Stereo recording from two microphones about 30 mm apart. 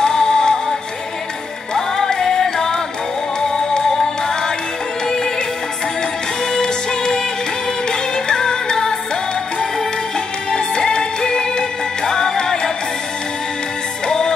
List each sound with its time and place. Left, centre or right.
0.0 s music: left
1.8 s music: centre
6.5 s music: left
10.5 s music: left
14.0 s music: left